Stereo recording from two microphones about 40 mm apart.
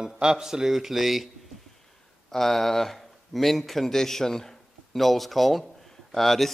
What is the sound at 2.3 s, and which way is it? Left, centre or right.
Speech, centre.